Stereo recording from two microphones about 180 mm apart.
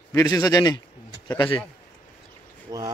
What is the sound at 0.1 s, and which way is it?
Speech, 20° left (ahead or behind).